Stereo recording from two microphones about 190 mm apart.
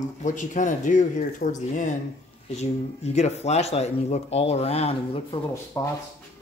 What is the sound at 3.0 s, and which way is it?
Speech, 35° left (ahead or behind).